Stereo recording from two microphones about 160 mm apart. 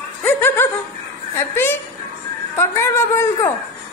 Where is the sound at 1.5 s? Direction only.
15° left (ahead or behind).